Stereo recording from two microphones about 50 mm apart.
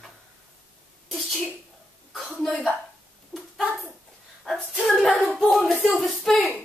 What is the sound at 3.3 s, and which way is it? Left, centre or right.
Hands, centre.